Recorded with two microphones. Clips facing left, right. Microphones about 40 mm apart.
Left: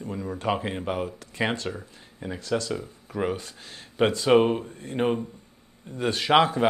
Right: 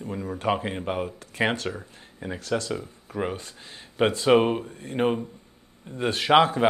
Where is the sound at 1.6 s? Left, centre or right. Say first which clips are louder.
Right 1 dB; centre.